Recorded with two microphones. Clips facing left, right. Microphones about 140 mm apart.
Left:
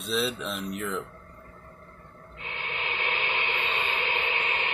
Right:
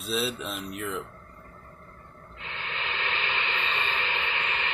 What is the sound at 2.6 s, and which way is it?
Static, 15° left (ahead or behind).